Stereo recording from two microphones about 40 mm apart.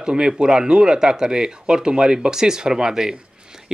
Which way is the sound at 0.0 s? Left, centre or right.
Centre.